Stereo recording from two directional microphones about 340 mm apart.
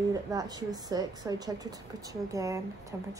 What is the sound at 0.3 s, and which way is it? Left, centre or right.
Speech, centre.